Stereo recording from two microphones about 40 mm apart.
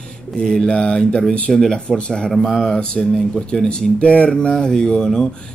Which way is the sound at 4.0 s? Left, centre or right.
Left.